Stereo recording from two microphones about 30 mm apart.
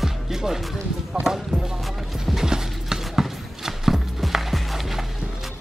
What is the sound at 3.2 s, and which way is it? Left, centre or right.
Music, centre.